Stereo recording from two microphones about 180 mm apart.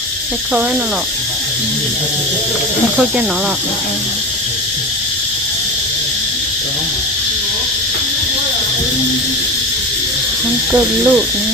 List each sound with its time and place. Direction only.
10.7 s owl: 10° right (ahead or behind)